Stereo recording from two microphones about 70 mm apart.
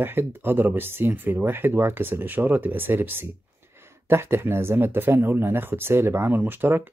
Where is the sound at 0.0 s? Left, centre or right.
Right.